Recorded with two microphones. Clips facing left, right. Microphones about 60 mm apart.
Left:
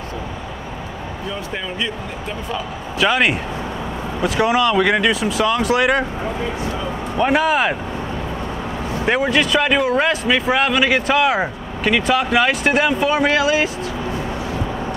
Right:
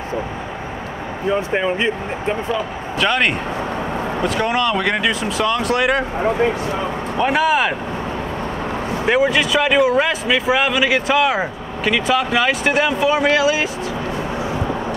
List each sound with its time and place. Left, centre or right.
1.2 s speech: right
2.5 s speech: centre
6.2 s speech: right
7.2 s speech: centre
9.0 s speech: centre